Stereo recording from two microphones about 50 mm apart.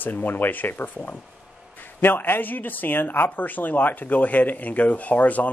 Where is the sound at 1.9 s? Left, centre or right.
Left.